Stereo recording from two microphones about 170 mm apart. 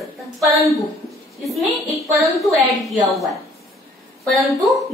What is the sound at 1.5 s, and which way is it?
A woman's voice, centre (ahead or behind).